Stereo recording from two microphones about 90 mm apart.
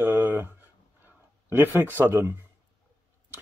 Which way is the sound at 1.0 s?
20° right (ahead or behind).